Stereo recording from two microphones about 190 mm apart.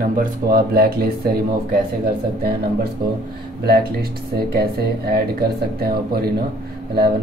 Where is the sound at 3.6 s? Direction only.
55° right (ahead or behind).